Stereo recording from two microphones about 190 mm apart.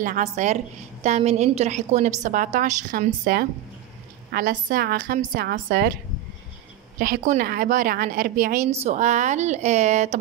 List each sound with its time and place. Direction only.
0.0 s a woman's voice: 40° right (ahead or behind)
7.0 s a woman's voice: 45° right (ahead or behind)
8.6 s a woman's voice: 35° right (ahead or behind)